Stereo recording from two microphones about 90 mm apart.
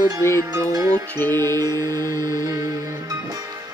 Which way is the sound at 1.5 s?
45° right (ahead or behind).